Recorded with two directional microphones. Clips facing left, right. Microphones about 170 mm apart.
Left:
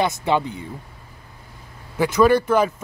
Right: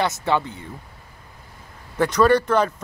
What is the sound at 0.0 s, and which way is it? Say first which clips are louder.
Speech: left 1 dB; 15° left (ahead or behind).